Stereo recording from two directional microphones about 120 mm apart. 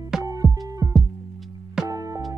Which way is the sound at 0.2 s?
30° right (ahead or behind).